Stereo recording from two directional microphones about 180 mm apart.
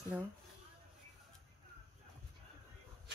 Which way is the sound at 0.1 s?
5° right (ahead or behind).